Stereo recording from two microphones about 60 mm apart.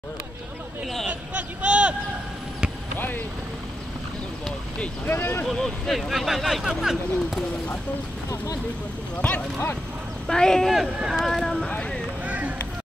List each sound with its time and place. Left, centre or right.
1.0 s a sound: right
5.0 s speech: left
5.5 s speech: centre
9.2 s speech: left
10.2 s speech: centre
12.3 s vehicle: right